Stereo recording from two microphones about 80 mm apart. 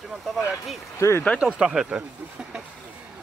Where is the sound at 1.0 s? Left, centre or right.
Left.